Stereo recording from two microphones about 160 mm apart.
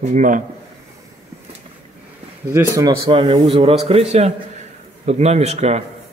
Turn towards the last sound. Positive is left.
turn(degrees=-45)  # may be behind; listen again after turning